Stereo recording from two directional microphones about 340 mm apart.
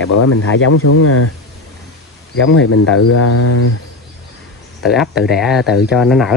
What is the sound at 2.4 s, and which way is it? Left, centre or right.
Speech, left.